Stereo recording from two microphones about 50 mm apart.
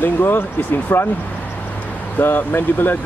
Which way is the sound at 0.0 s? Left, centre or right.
Left.